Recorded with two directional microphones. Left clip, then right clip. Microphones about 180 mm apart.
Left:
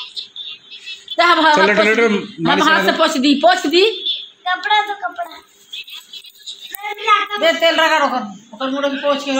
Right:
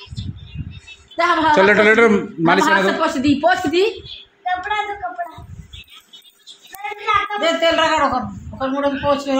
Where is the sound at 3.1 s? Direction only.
35° left (ahead or behind).